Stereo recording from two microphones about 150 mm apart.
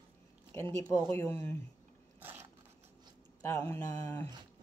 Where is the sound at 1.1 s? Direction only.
20° left (ahead or behind).